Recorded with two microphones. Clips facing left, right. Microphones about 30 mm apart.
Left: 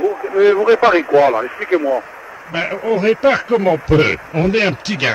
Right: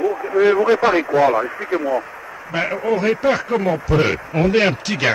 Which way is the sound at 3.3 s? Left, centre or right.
Centre.